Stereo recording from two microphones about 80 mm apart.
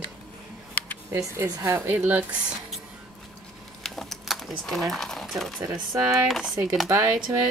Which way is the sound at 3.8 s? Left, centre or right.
Centre.